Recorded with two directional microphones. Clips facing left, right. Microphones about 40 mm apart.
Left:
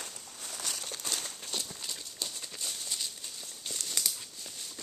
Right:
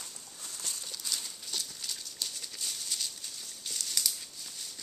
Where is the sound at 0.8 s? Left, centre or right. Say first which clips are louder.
Left 2 dB; left.